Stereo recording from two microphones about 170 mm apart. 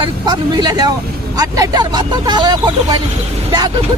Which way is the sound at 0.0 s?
25° right (ahead or behind).